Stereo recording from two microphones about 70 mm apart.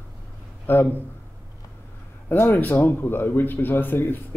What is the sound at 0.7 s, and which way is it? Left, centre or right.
Speech, left.